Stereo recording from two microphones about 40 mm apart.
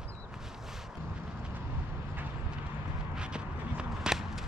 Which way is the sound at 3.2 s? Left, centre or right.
Right.